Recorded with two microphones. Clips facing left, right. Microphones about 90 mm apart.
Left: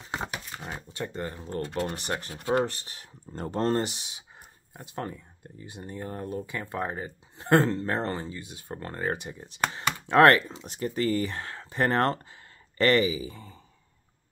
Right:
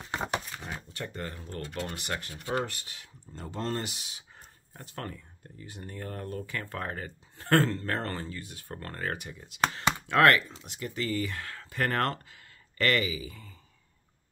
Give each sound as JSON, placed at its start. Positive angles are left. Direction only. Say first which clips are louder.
{"t": 0.5, "sound": "shuffling cards", "louder": "left 2 dB", "side_deg": 30}
{"t": 0.9, "sound": "speech", "louder": "left 6 dB", "side_deg": 20}
{"t": 3.3, "sound": "speech", "louder": "left 7 dB", "side_deg": 50}